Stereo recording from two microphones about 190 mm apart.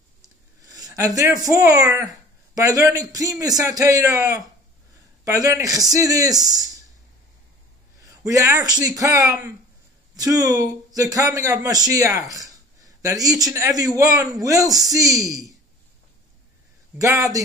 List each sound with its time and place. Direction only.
0.2 s a man's voice: 20° right (ahead or behind)
8.0 s a man's voice: 15° right (ahead or behind)
17.0 s speech: 15° right (ahead or behind)